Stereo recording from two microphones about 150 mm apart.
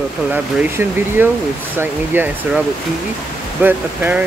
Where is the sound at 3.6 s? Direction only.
10° right (ahead or behind).